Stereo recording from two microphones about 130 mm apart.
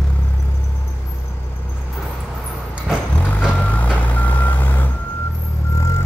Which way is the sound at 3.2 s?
10° left (ahead or behind).